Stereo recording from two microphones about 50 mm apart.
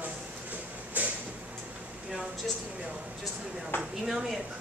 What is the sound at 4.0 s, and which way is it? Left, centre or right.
Speech, centre.